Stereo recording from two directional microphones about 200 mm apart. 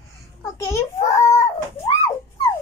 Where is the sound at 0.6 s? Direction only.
15° left (ahead or behind).